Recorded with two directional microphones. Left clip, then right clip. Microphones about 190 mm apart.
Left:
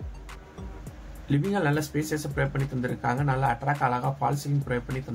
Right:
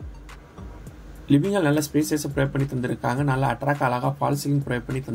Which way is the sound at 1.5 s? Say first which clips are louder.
Right 5 dB; 15° right (ahead or behind).